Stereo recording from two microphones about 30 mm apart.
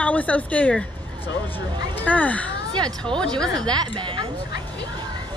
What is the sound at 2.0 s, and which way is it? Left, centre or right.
Speech, left.